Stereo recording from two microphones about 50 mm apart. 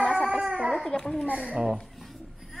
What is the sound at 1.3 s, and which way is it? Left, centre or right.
Baby cry, right.